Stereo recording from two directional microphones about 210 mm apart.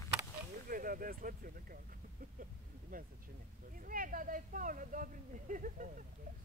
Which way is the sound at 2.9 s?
40° right (ahead or behind).